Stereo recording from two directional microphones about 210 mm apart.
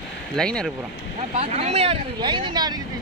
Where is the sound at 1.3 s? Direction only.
30° right (ahead or behind).